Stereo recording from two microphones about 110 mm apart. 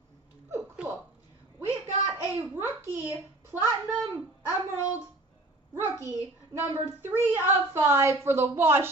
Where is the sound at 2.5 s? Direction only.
25° right (ahead or behind).